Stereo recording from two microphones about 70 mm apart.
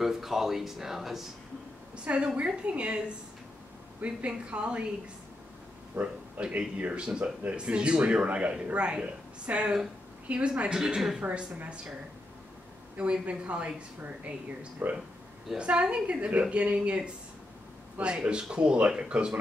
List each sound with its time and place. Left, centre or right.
0.0 s speech: centre
2.0 s speech: centre
4.0 s a woman's voice: centre
5.9 s a woman's voice: right
10.8 s speech: centre
12.9 s a woman's voice: centre